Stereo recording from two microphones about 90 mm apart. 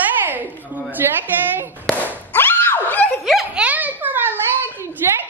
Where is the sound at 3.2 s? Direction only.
5° right (ahead or behind).